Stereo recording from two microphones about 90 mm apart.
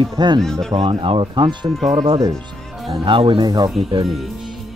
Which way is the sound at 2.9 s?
70° right (ahead or behind).